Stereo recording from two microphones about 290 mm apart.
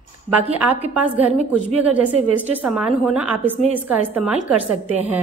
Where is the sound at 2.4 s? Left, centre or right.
Centre.